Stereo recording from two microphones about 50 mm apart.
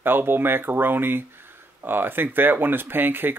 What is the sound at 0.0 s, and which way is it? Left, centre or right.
Speech, right.